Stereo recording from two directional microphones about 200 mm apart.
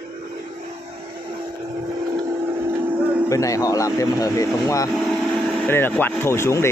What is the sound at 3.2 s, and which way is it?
Speech, 15° left (ahead or behind).